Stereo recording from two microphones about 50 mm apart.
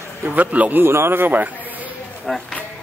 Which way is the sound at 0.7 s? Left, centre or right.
Right.